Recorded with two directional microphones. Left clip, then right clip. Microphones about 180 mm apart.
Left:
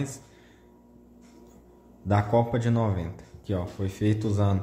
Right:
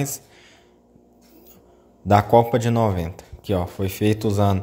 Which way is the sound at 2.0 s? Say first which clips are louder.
Right 9 dB; 30° right (ahead or behind).